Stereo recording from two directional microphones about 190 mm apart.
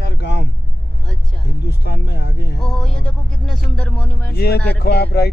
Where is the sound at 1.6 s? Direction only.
65° left (ahead or behind).